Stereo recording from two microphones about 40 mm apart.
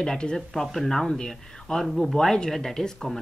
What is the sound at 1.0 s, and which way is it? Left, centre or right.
Speech, centre.